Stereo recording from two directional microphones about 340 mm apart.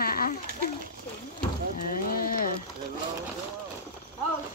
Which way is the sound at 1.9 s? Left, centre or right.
Left.